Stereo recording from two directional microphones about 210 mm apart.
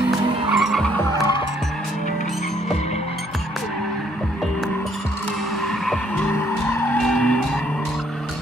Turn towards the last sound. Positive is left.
turn(degrees=10)  # may be behind; listen again after turning